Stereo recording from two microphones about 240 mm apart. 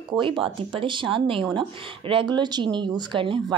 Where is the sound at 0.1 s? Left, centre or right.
Right.